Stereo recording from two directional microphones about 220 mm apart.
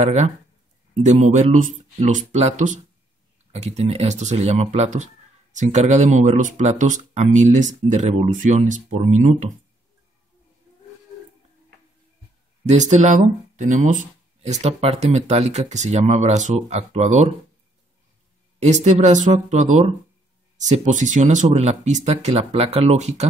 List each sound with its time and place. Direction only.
0.0 s speech: 30° right (ahead or behind)
12.6 s speech: 30° right (ahead or behind)
18.6 s speech: 30° right (ahead or behind)